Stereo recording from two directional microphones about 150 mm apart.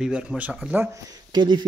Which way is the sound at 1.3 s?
30° right (ahead or behind).